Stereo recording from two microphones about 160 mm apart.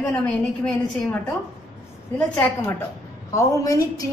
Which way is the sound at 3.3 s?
20° left (ahead or behind).